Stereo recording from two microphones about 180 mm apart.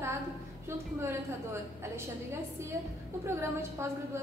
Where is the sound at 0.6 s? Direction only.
15° right (ahead or behind).